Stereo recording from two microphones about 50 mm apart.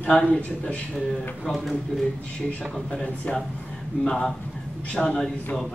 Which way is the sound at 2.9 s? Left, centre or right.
Left.